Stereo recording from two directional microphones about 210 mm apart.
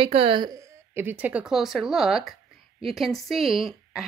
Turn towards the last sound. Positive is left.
turn(degrees=0)  # may be behind; listen again after turning